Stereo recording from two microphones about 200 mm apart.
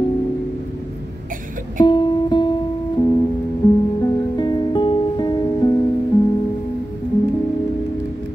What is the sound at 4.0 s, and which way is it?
Music, 20° left (ahead or behind).